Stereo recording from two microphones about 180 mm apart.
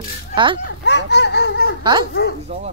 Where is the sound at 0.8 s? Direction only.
75° left (ahead or behind).